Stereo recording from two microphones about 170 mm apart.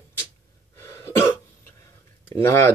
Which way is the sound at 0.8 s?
15° left (ahead or behind).